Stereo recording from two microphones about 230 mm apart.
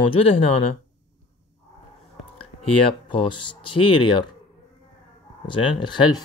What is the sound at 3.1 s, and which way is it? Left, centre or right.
Speech, left.